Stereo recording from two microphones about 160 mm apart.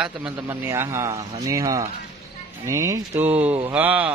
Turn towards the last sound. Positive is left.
turn(degrees=-10)  # may be behind; listen again after turning